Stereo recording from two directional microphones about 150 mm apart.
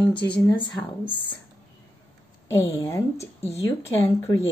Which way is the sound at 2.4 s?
20° left (ahead or behind).